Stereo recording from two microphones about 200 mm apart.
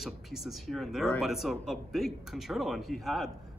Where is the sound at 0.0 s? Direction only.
Centre (ahead or behind).